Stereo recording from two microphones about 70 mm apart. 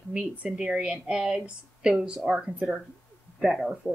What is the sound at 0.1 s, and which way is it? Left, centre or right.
A woman's voice, centre.